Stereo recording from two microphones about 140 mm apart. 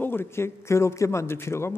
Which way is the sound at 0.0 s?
15° left (ahead or behind).